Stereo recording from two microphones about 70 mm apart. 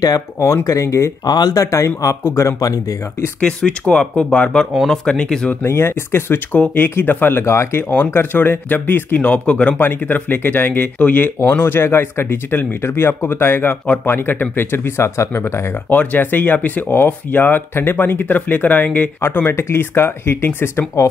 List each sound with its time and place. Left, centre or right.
0.0 s speech: left
1.2 s speech: left
1.5 s speech: left
2.6 s speech: left
3.3 s speech: centre
5.5 s speech: left
6.5 s speech: left
15.9 s speech: left